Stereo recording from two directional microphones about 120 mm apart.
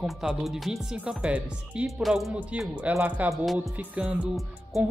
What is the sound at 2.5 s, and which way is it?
Speech, 10° right (ahead or behind).